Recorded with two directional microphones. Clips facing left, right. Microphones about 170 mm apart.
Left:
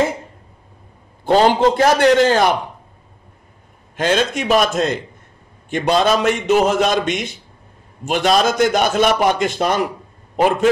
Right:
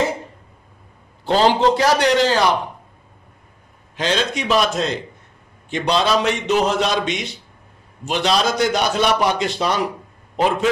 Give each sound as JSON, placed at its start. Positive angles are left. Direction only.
{"t": 1.2, "sound": "a man's voice", "side_deg": 50}
{"t": 3.9, "sound": "a man's voice", "side_deg": 50}